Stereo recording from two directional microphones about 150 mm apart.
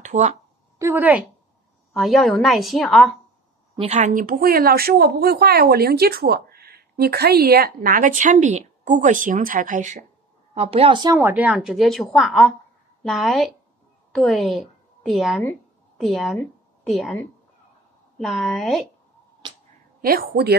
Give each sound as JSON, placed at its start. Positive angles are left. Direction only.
{"t": 0.0, "sound": "speech", "side_deg": -50}
{"t": 0.7, "sound": "a woman's voice", "side_deg": -15}
{"t": 2.0, "sound": "a woman's voice", "side_deg": 0}
{"t": 3.7, "sound": "a woman's voice", "side_deg": -45}
{"t": 4.1, "sound": "speech", "side_deg": -65}
{"t": 10.5, "sound": "a woman's voice", "side_deg": -40}
{"t": 11.1, "sound": "a woman's voice", "side_deg": -10}
{"t": 18.1, "sound": "a woman's voice", "side_deg": 0}
{"t": 20.0, "sound": "speech", "side_deg": -80}